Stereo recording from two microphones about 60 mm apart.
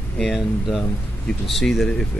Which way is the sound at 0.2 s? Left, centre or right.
Centre.